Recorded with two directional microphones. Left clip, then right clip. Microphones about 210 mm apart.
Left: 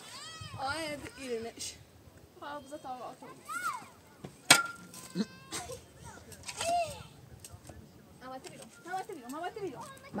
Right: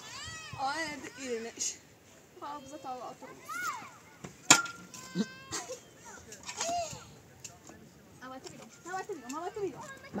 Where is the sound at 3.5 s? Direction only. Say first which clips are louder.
Even; 45° right (ahead or behind).